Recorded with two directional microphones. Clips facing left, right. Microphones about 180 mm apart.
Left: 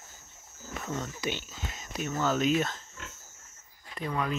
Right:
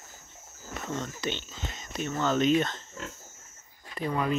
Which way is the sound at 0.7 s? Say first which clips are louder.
Right 1 dB; 5° left (ahead or behind).